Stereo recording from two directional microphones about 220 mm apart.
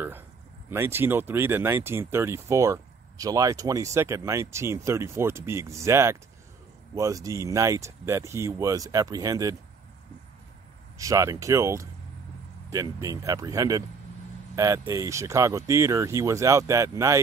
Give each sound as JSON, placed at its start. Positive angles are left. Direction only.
{"t": 0.7, "sound": "speech", "side_deg": -10}
{"t": 11.0, "sound": "speech", "side_deg": -15}